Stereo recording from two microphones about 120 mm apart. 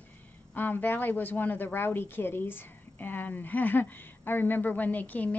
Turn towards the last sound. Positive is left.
turn(degrees=15)  # may be behind; listen again after turning